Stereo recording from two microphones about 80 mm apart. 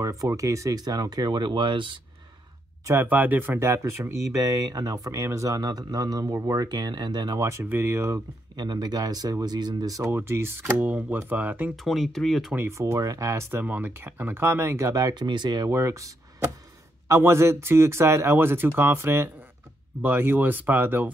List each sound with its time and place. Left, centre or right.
0.0 s speech: right
2.8 s speech: right
3.1 s speech: right
7.3 s speech: right
8.5 s speech: right
9.9 s speech: right
10.8 s speech: right
11.7 s speech: centre
12.5 s speech: right
15.2 s speech: right
15.7 s speech: right
17.1 s speech: right